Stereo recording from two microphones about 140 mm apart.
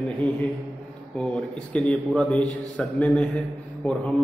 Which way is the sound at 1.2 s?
10° left (ahead or behind).